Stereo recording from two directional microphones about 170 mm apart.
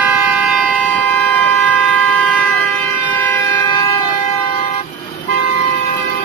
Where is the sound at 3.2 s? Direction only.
15° left (ahead or behind).